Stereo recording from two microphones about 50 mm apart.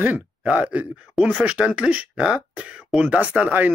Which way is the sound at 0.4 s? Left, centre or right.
Right.